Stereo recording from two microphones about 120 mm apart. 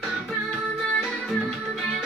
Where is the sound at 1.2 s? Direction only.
Centre (ahead or behind).